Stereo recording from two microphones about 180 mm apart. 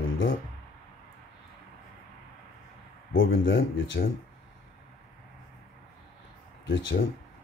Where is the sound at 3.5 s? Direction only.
90° left.